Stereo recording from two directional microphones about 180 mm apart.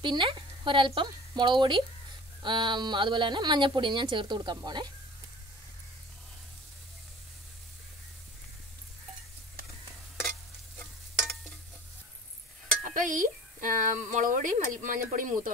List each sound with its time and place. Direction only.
0.0 s a woman's voice: 25° right (ahead or behind)
12.9 s speech: 45° right (ahead or behind)